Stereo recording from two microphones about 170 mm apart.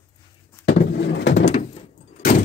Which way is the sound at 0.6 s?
90° left.